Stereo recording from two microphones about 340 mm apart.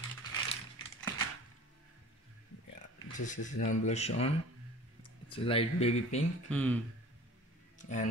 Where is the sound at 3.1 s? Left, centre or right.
Left.